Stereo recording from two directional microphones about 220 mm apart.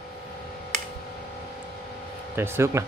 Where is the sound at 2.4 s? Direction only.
10° right (ahead or behind).